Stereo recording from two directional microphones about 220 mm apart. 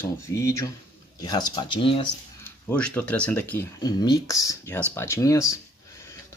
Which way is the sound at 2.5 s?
10° left (ahead or behind).